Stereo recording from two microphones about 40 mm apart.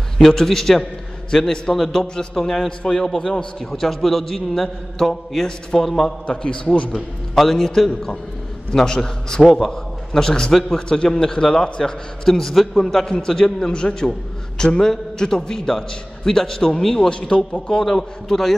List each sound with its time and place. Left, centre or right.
0.2 s a man's voice: centre
6.2 s a man's voice: left
6.9 s a man's voice: centre
9.4 s a man's voice: centre
12.3 s a man's voice: centre
17.1 s a man's voice: left